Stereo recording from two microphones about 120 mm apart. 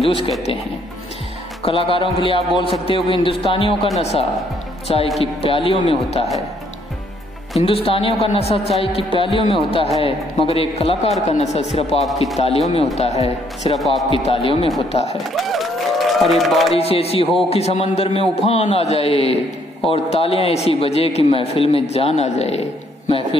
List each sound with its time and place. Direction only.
1.6 s a man's voice: 50° left (ahead or behind)
4.9 s a man's voice: 50° left (ahead or behind)
7.6 s a man's voice: 50° left (ahead or behind)
13.7 s a man's voice: centre (ahead or behind)
14.1 s a man's voice: 50° left (ahead or behind)
15.3 s a sound: centre (ahead or behind)
16.7 s a man's voice: 55° left (ahead or behind)